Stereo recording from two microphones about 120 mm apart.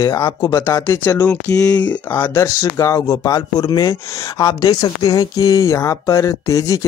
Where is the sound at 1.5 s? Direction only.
30° left (ahead or behind).